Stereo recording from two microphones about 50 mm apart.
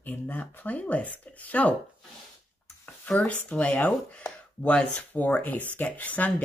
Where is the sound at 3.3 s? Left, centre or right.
Left.